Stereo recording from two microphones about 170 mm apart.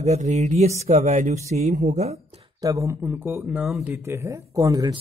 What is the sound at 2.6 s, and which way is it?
Speech, 20° right (ahead or behind).